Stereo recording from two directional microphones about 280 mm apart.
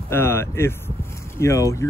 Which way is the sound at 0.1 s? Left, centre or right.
Centre.